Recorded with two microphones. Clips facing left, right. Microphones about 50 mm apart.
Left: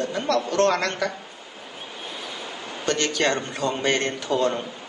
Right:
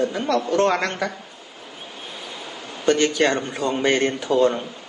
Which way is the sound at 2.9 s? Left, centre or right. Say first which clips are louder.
Right 5 dB; centre.